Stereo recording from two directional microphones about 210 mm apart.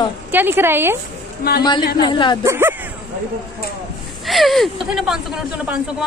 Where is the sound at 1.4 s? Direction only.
50° left (ahead or behind).